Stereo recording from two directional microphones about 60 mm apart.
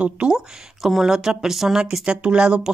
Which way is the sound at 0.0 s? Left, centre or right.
Centre.